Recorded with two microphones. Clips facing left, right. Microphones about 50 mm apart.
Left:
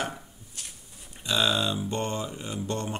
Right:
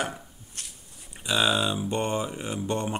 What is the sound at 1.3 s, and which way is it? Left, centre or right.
Speech, centre.